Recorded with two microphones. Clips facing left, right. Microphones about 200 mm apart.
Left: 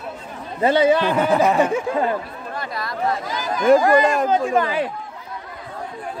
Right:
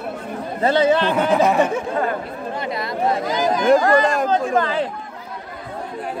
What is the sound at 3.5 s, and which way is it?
Speech, 5° left (ahead or behind).